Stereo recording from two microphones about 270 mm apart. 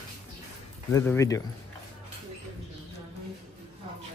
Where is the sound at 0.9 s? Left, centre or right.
Centre.